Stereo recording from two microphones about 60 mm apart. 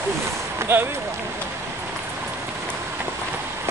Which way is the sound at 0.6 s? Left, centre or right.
Right.